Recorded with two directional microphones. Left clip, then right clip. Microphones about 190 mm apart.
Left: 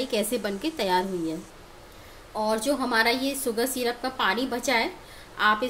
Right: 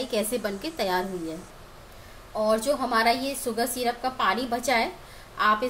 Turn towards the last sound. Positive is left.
turn(degrees=15)  # may be behind; listen again after turning